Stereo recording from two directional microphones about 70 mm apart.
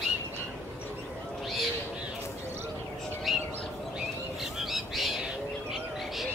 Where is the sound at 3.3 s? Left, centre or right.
Centre.